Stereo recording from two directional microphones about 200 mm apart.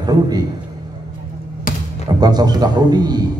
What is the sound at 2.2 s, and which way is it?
A man's voice, 20° right (ahead or behind).